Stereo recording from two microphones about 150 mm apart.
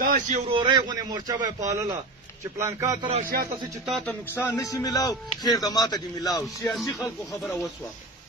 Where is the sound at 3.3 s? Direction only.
80° right.